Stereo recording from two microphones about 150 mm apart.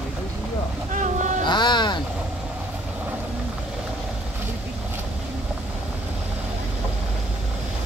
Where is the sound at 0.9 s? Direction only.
55° right (ahead or behind).